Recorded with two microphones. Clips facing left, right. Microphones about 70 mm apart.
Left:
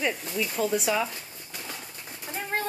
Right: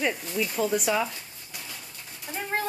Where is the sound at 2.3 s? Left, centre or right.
Centre.